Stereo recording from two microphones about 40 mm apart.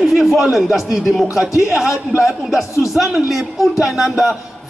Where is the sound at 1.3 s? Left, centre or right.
Centre.